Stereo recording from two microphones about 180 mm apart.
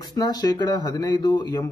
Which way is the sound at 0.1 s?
20° left (ahead or behind).